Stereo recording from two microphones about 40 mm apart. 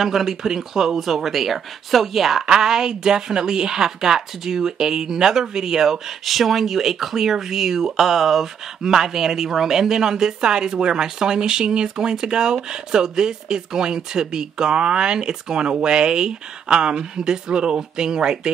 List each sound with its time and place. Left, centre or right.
0.0 s speech: centre
2.4 s a woman's voice: centre